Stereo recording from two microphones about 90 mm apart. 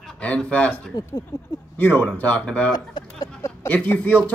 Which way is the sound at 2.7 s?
50° left (ahead or behind).